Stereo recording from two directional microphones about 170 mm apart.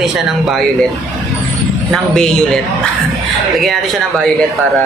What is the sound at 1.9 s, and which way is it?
Speech, 5° left (ahead or behind).